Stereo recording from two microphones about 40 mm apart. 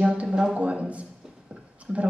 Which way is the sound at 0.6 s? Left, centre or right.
Right.